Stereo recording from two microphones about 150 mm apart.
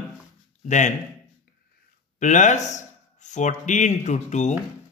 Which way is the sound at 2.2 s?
55° left (ahead or behind).